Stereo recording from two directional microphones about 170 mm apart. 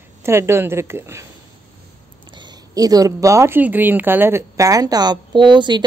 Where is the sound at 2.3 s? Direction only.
25° right (ahead or behind).